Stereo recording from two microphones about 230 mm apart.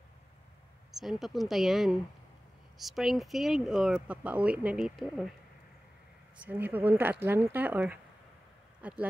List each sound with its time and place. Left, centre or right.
0.9 s speech: centre
6.3 s speech: centre